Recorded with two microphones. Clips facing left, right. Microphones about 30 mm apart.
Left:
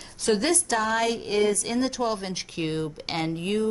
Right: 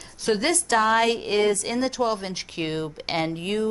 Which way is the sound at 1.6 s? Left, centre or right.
Centre.